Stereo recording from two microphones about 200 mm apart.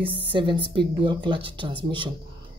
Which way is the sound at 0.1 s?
25° right (ahead or behind).